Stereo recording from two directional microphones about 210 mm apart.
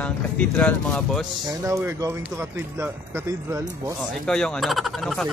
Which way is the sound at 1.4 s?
15° right (ahead or behind).